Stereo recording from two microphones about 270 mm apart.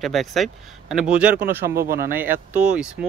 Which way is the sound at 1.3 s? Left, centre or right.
Right.